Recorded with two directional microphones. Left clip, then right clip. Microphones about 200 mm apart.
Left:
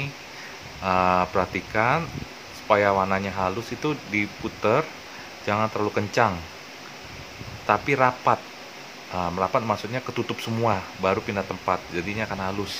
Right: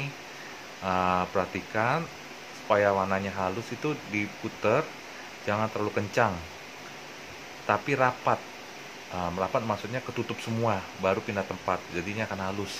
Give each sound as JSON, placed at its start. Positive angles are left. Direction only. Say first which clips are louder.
{"t": 0.8, "sound": "speech", "louder": "left 6 dB", "side_deg": 20}
{"t": 7.6, "sound": "speech", "louder": "left 5 dB", "side_deg": 15}